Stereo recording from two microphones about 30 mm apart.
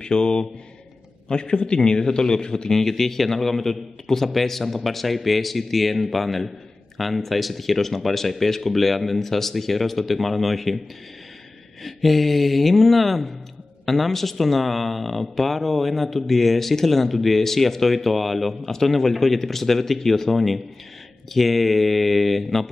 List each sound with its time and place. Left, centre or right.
0.0 s a man's voice: left
2.7 s speech: centre
11.8 s speech: centre